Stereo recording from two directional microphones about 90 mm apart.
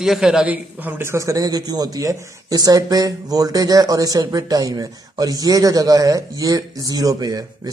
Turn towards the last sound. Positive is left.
turn(degrees=-45)  # may be behind; listen again after turning